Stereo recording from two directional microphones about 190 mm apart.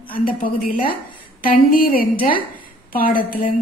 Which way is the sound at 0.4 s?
50° left (ahead or behind).